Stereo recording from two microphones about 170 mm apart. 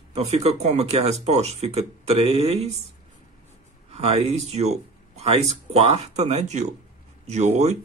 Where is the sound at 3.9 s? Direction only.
40° right (ahead or behind).